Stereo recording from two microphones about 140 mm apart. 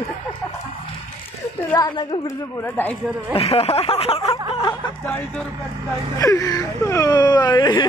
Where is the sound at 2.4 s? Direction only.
15° left (ahead or behind).